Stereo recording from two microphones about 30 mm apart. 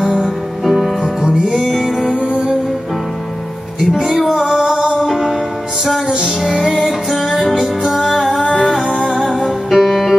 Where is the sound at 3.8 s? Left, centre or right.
Right.